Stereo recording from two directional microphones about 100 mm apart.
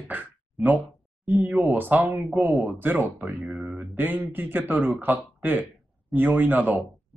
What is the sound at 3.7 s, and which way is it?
Speech, 20° right (ahead or behind).